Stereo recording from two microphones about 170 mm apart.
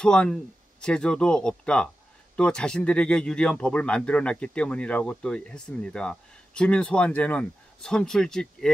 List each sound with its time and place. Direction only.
0.0 s speech: 5° left (ahead or behind)